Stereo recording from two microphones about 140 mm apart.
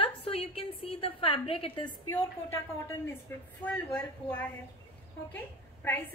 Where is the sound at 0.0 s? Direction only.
40° left (ahead or behind).